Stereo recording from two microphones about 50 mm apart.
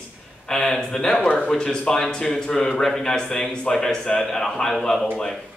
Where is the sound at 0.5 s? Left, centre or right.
Centre.